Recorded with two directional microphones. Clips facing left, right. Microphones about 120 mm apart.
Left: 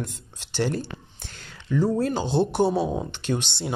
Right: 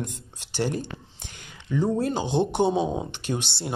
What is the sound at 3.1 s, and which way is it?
Speech, 10° right (ahead or behind).